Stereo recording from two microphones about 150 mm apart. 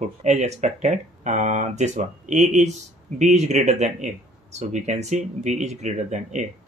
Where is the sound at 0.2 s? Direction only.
50° right (ahead or behind).